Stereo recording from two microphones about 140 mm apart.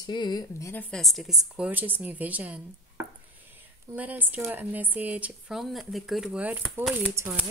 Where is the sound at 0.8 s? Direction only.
Centre (ahead or behind).